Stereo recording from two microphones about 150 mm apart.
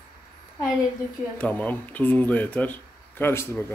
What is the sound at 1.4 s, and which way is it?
Speech, 10° left (ahead or behind).